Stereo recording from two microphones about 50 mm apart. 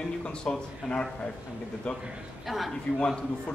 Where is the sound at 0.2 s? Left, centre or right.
Centre.